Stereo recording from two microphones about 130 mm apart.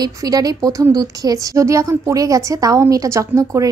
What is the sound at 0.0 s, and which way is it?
A woman's voice, 30° right (ahead or behind).